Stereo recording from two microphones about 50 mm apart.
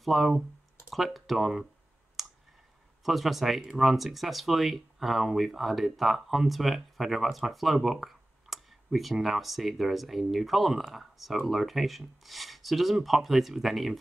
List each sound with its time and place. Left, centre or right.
0.0 s speech: centre
3.0 s speech: centre